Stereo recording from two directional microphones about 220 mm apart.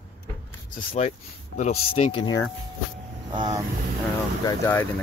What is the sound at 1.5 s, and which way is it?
Speech, 30° left (ahead or behind).